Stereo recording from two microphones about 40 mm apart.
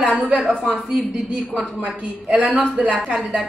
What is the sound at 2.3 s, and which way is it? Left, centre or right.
Speech, right.